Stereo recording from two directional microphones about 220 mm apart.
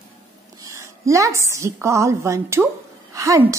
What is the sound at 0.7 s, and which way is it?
A woman's voice, 15° right (ahead or behind).